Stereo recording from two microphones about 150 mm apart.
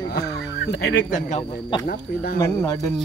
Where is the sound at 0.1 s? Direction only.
90° left.